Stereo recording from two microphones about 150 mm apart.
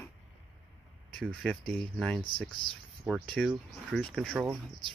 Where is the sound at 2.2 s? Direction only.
35° left (ahead or behind).